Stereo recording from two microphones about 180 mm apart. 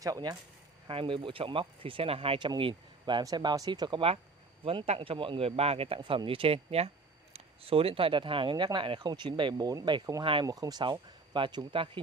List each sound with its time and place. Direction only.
0.0 s a man's voice: 20° right (ahead or behind)